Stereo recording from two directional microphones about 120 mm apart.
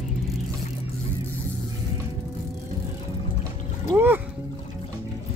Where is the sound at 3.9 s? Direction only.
15° right (ahead or behind).